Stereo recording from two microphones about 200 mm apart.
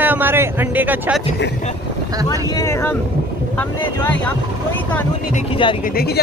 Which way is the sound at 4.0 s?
10° left (ahead or behind).